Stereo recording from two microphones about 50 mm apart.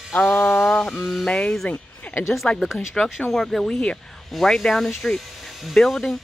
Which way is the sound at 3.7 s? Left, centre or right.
Centre.